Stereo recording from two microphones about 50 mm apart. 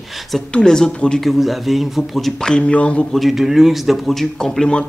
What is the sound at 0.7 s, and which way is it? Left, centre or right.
Speech, centre.